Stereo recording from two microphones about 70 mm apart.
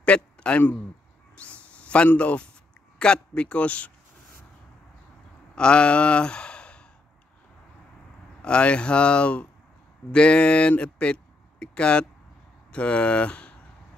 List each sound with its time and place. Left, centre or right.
0.0 s speech: centre
1.4 s a sound: centre
2.1 s speech: centre
5.6 s speech: centre
8.4 s speech: centre